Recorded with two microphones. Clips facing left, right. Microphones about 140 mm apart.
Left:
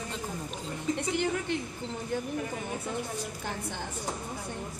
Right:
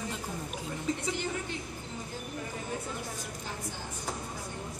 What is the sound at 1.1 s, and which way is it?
Speech, 60° left (ahead or behind).